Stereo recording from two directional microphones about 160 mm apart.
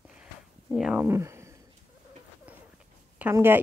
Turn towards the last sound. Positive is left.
turn(degrees=-15)  # may be behind; listen again after turning